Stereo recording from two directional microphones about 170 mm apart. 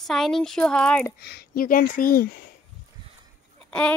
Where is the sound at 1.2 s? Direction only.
70° left (ahead or behind).